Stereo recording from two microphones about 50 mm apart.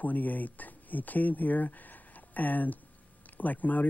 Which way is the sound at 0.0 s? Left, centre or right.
Left.